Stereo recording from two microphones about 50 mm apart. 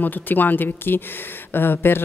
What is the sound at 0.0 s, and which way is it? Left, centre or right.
Speech, left.